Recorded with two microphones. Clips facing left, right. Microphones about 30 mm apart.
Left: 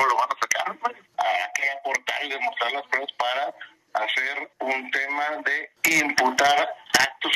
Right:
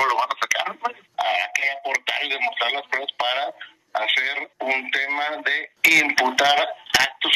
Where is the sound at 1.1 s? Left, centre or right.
Right.